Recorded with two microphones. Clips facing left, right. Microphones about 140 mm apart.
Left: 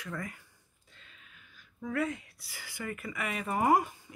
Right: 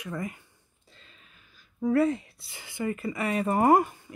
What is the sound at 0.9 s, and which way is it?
Speech, 35° right (ahead or behind).